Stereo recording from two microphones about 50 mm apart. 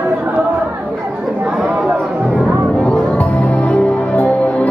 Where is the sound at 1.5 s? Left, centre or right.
Centre.